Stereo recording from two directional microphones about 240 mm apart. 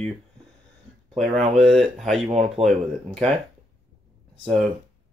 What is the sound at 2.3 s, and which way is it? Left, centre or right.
Speech, right.